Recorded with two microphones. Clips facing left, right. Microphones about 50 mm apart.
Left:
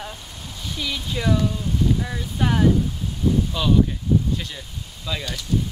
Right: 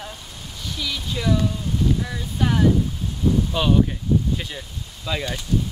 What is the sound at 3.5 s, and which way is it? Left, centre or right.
Speech, right.